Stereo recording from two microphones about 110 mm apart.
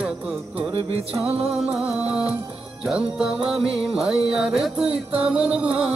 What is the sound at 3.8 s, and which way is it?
Music, 5° right (ahead or behind).